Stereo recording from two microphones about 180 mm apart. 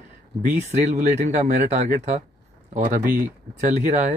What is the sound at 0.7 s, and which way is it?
Speech, 40° right (ahead or behind).